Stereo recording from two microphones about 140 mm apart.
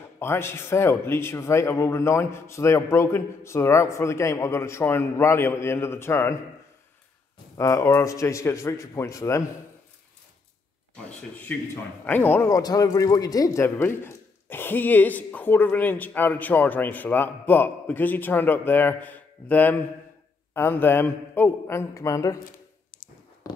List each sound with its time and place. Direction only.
0.2 s a man's voice: 15° left (ahead or behind)
7.5 s a man's voice: 20° left (ahead or behind)
11.1 s a man's voice: 15° left (ahead or behind)